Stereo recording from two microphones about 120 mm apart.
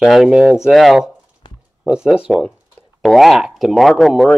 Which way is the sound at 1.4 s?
40° left (ahead or behind).